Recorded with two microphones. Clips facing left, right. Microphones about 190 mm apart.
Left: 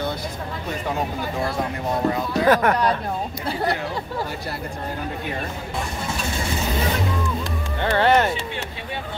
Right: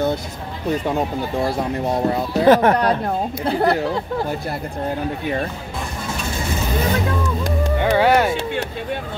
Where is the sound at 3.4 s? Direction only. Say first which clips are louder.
Right 7 dB; 55° right (ahead or behind).